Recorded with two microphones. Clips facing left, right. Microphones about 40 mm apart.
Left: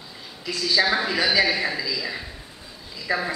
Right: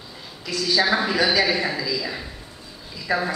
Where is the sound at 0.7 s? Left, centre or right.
Centre.